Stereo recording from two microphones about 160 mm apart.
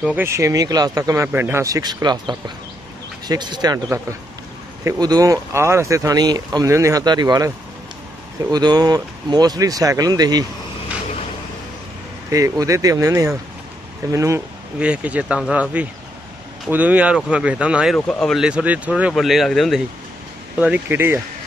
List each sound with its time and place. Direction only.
0.0 s speech: 10° right (ahead or behind)
12.3 s speech: 20° right (ahead or behind)
14.8 s speech: 10° right (ahead or behind)
17.9 s speech: 5° left (ahead or behind)
20.5 s speech: 10° right (ahead or behind)